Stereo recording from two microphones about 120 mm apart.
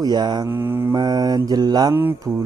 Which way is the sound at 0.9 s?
35° right (ahead or behind).